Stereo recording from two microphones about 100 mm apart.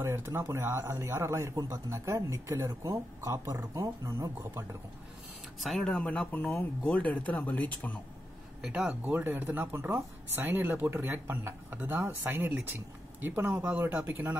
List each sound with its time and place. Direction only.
0.0 s speech: 25° right (ahead or behind)
5.6 s speech: centre (ahead or behind)
5.9 s speech: 15° left (ahead or behind)
8.6 s speech: 15° right (ahead or behind)